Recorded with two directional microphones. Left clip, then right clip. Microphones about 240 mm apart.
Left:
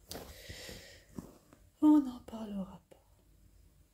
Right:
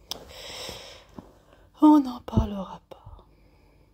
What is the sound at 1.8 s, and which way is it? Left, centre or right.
Speech, right.